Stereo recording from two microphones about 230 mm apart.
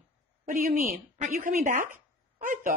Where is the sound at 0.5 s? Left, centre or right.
Right.